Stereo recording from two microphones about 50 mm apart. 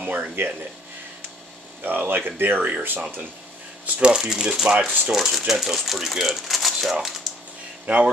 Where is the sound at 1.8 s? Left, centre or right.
Right.